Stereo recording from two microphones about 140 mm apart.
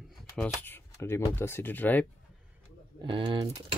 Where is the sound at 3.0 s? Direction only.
35° right (ahead or behind).